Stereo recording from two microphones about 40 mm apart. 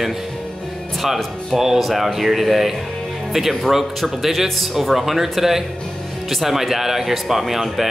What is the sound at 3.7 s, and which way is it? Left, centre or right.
Speech, centre.